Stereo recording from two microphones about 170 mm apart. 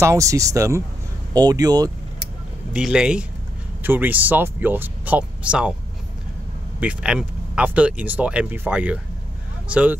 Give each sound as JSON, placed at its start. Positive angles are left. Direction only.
{"t": 0.0, "sound": "speech", "side_deg": -15}
{"t": 2.7, "sound": "speech", "side_deg": -5}
{"t": 6.8, "sound": "speech", "side_deg": -5}